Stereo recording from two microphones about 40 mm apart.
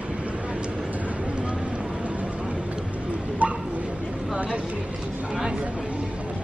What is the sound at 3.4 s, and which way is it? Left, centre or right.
Bow-wow, right.